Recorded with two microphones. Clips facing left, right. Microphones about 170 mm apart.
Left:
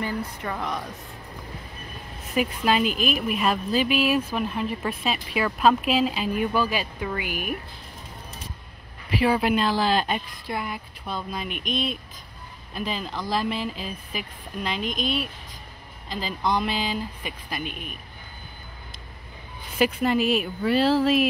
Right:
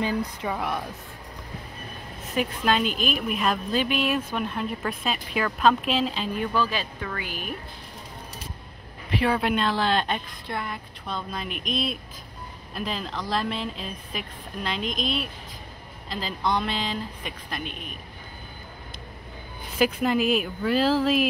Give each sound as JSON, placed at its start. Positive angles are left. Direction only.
{"t": 0.0, "sound": "speech", "side_deg": -15}
{"t": 2.3, "sound": "a woman's voice", "side_deg": 5}
{"t": 9.1, "sound": "a woman's voice", "side_deg": 5}
{"t": 19.8, "sound": "a woman's voice", "side_deg": 0}